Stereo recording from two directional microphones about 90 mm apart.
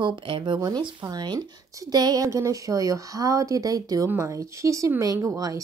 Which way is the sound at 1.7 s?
45° right (ahead or behind).